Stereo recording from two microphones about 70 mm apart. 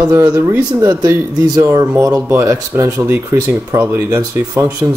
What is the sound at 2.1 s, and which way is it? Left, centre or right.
Speech, right.